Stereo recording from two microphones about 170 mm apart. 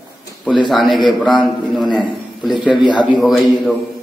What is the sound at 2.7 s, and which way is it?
Speech, 25° left (ahead or behind).